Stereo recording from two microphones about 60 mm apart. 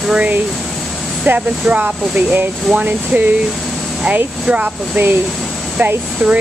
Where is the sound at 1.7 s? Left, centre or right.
Right.